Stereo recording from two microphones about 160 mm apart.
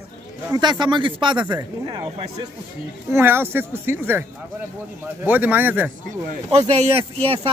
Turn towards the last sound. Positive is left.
turn(degrees=-40)  # may be behind; listen again after turning